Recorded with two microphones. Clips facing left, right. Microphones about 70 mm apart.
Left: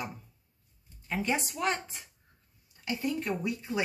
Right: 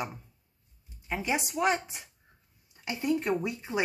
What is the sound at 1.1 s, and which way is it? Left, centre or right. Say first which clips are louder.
Speech: right 1 dB; centre.